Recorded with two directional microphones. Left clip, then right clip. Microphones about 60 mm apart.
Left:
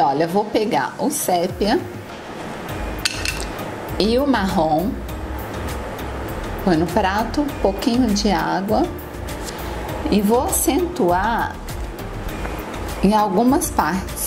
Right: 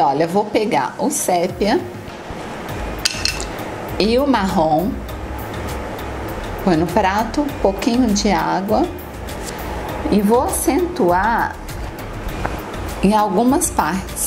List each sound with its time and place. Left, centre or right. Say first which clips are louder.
0.0 s a woman's voice: right 2 dB; left
3.0 s a sound: right 3 dB; centre
4.0 s a woman's voice: right 2 dB; left
6.6 s a woman's voice: right 2 dB; left
10.6 s a woman's voice: right 2 dB; left
13.0 s a woman's voice: right 1 dB; left